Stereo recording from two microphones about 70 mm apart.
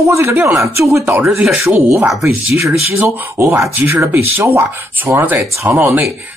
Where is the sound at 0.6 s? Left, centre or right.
Right.